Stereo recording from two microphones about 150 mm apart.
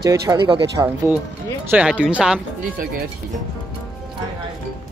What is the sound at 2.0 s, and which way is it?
Speech, 5° right (ahead or behind).